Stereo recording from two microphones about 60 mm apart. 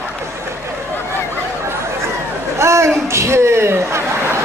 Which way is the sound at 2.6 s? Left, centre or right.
Right.